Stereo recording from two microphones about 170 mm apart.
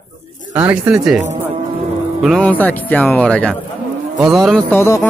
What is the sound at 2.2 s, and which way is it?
Speech, 5° left (ahead or behind).